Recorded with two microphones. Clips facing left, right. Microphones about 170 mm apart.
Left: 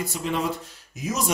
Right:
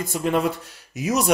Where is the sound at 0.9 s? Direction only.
75° right (ahead or behind).